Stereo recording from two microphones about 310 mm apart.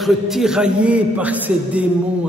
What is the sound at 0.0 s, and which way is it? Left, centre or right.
A man's voice, centre.